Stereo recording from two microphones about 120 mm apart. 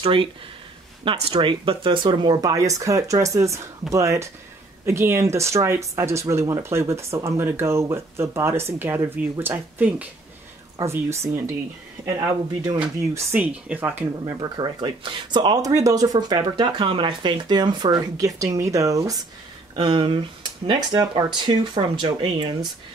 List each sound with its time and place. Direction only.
0.0 s speech: 50° right (ahead or behind); by 10.0 s 15° right (ahead or behind)
10.8 s speech: 25° right (ahead or behind)
13.1 s speech: 15° right (ahead or behind)
14.2 s speech: 35° right (ahead or behind)
19.7 s speech: 40° right (ahead or behind)
20.9 s speech: 30° right (ahead or behind)